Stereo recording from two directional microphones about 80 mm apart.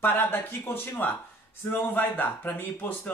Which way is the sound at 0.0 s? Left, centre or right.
Left.